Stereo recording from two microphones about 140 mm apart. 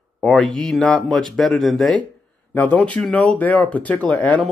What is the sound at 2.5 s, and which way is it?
Speech, 15° left (ahead or behind).